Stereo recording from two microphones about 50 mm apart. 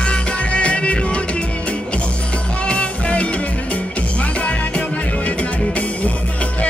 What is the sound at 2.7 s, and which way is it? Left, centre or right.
Music, left.